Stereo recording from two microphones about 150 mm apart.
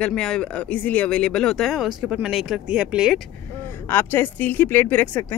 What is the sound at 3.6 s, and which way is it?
Speech, 15° left (ahead or behind).